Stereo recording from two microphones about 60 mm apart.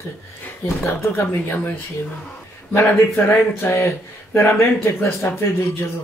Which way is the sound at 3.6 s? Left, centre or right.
Left.